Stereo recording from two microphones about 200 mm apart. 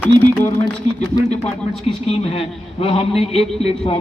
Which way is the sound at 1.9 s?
30° left (ahead or behind).